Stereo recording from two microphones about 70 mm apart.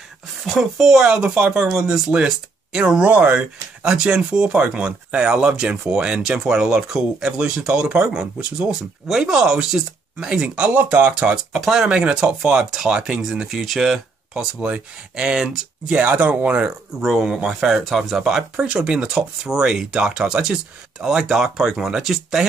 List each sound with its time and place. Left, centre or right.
0.5 s speech: centre
17.0 s speech: centre